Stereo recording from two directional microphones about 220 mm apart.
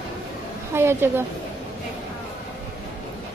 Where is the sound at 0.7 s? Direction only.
10° right (ahead or behind).